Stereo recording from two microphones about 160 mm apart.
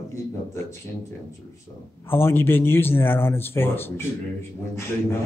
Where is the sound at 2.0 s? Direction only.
15° left (ahead or behind).